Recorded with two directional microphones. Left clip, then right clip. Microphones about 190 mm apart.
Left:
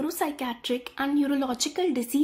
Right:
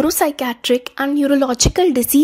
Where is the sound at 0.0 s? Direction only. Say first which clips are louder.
Right 12 dB; 45° right (ahead or behind).